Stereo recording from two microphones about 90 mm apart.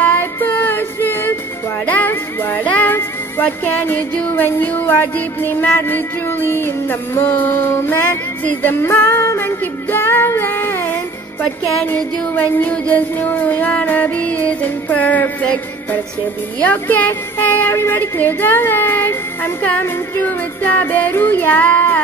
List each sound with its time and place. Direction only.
0.0 s female singing: 20° left (ahead or behind)
1.9 s music: 20° left (ahead or behind)